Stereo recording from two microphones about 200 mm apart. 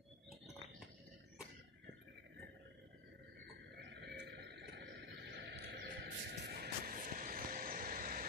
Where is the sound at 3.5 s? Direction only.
65° right (ahead or behind); by 8.3 s 45° right (ahead or behind).